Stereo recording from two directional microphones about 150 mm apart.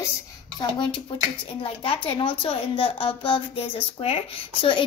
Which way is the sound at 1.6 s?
35° left (ahead or behind).